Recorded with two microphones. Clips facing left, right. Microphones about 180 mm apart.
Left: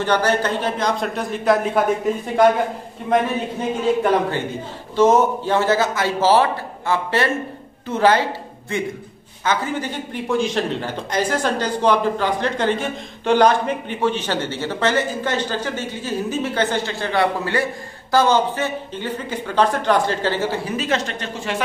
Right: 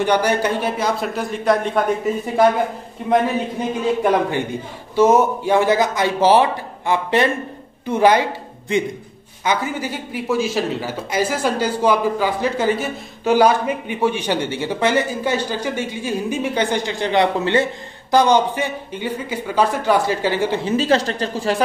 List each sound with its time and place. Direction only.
0.0 s a man's voice: 15° right (ahead or behind)
3.1 s a man's voice: 15° right (ahead or behind); by 21.6 s 35° right (ahead or behind)